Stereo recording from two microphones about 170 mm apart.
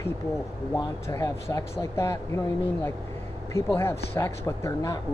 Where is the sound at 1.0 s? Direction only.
15° left (ahead or behind).